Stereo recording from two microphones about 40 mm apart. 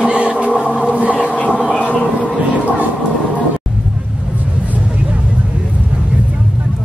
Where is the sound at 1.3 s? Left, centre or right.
Left.